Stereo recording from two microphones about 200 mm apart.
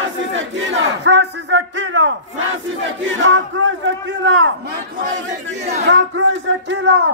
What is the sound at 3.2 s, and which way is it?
Speech, 70° right (ahead or behind).